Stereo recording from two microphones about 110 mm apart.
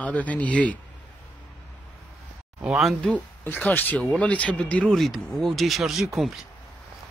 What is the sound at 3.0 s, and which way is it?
Speech, 10° left (ahead or behind).